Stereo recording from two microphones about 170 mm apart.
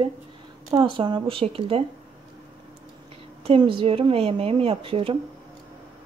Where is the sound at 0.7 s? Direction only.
30° right (ahead or behind).